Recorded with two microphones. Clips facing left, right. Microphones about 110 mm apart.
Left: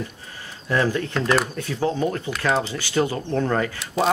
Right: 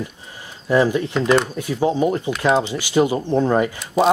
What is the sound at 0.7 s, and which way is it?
Speech, 15° right (ahead or behind).